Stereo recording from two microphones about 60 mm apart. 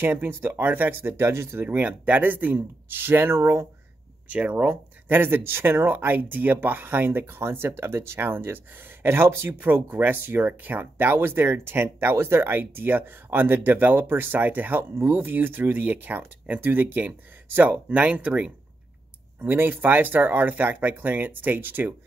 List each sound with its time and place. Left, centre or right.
0.0 s speech: right
1.7 s speech: right
4.3 s speech: right
5.1 s speech: right
19.5 s speech: right